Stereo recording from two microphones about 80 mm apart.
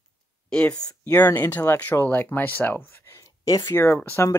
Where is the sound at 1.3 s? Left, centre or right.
Left.